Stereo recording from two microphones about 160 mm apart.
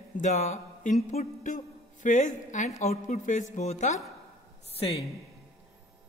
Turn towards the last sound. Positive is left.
turn(degrees=35)  # may be behind; listen again after turning